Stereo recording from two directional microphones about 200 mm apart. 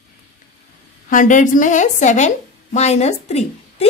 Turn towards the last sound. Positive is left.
turn(degrees=30)  # may be behind; listen again after turning